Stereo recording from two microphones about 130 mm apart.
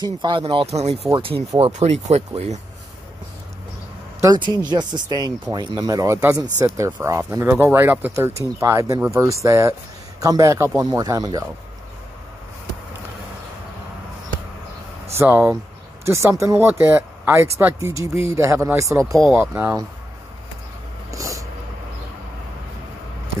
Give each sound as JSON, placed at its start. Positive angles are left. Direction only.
{"t": 0.0, "sound": "speech", "side_deg": -35}
{"t": 1.7, "sound": "speech", "side_deg": -60}
{"t": 4.2, "sound": "speech", "side_deg": -35}
{"t": 15.1, "sound": "speech", "side_deg": -15}
{"t": 21.1, "sound": "a sound", "side_deg": -25}